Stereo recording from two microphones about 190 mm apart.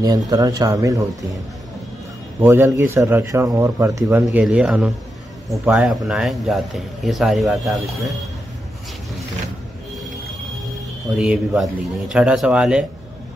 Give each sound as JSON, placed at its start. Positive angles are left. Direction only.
{"t": 0.0, "sound": "speech", "side_deg": -20}
{"t": 2.4, "sound": "a man's voice", "side_deg": -15}
{"t": 11.1, "sound": "a man's voice", "side_deg": -5}